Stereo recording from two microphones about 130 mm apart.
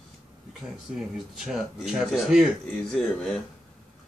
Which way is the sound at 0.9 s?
5° right (ahead or behind).